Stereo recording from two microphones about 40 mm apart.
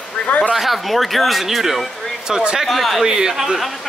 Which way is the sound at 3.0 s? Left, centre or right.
Centre.